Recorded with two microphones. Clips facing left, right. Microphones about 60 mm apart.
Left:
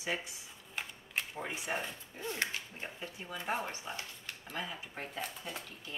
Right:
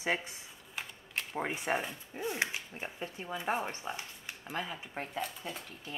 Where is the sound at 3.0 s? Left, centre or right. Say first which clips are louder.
Right 4 dB; right.